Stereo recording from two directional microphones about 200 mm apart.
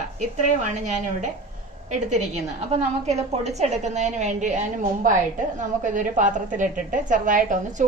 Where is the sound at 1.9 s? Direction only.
35° right (ahead or behind).